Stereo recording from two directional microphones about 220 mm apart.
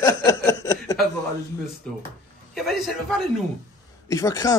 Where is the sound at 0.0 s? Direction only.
15° left (ahead or behind).